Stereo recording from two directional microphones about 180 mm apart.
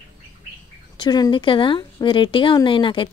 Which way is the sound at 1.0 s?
25° left (ahead or behind).